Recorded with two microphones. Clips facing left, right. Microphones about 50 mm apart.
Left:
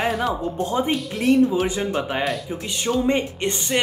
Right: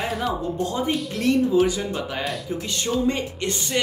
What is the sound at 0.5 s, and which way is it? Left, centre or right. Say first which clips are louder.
Speech: left 2 dB; left.